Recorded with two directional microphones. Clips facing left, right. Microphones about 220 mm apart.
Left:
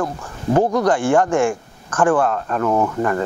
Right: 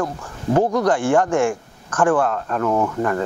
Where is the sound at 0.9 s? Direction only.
10° left (ahead or behind).